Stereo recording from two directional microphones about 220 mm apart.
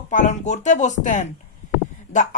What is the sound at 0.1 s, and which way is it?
Speech, 35° left (ahead or behind).